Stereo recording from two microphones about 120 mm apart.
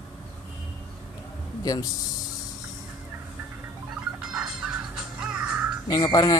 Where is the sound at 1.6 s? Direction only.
30° left (ahead or behind).